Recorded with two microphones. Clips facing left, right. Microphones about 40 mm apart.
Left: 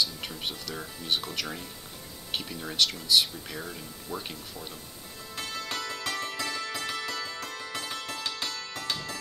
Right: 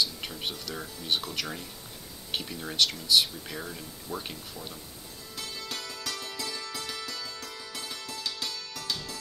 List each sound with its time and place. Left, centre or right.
0.0 s speech: centre
5.3 s music: left